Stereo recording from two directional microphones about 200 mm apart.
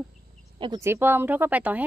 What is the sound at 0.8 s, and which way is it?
Speech, 10° right (ahead or behind).